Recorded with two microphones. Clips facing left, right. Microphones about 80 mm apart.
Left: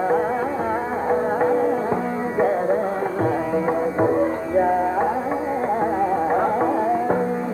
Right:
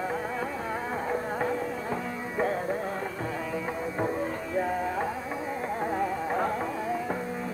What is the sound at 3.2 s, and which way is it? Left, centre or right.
Music, left.